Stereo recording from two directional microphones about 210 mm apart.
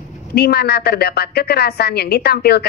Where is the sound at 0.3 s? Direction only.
50° left (ahead or behind).